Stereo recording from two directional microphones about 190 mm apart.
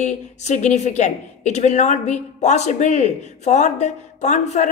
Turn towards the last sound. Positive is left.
turn(degrees=40)  # may be behind; listen again after turning